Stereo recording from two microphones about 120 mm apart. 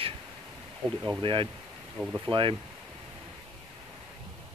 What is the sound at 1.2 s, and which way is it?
Speech, 45° right (ahead or behind).